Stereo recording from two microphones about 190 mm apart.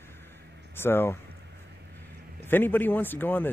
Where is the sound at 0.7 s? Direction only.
10° left (ahead or behind).